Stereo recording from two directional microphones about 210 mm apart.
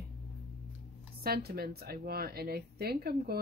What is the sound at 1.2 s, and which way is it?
Speech, 45° right (ahead or behind).